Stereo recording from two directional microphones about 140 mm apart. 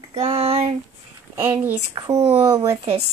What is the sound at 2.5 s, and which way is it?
Speech, 30° right (ahead or behind).